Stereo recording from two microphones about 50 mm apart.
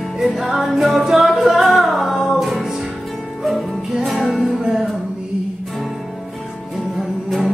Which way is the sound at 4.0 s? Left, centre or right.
Centre.